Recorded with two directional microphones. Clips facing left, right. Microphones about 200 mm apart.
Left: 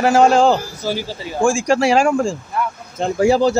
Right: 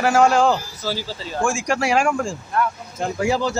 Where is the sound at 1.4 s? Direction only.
25° left (ahead or behind).